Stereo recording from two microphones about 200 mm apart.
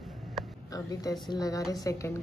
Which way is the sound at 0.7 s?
15° left (ahead or behind).